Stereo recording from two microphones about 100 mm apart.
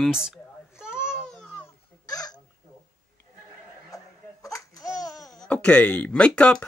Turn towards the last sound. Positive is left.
turn(degrees=10)  # may be behind; listen again after turning